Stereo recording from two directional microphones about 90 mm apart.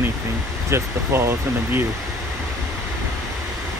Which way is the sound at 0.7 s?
30° right (ahead or behind).